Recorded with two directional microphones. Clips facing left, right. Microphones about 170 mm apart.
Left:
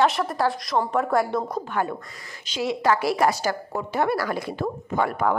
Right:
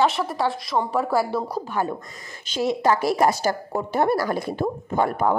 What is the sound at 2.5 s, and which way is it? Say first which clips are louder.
Speech: right 3 dB; 55° right (ahead or behind).